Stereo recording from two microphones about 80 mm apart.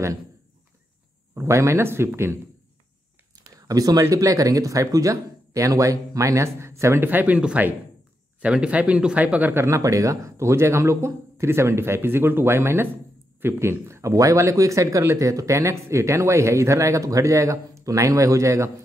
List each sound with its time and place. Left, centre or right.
1.3 s speech: right
3.5 s a sound: right
4.0 s speech: right
9.7 s speech: right